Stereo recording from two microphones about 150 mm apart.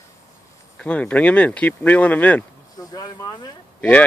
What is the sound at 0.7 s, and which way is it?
Speech, 10° left (ahead or behind).